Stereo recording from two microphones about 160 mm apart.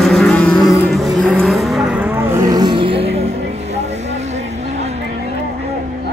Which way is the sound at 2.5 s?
25° right (ahead or behind).